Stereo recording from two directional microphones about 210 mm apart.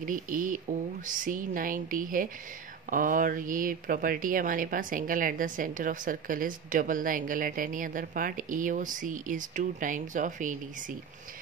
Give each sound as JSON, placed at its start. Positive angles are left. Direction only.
{"t": 0.0, "sound": "speech", "side_deg": -40}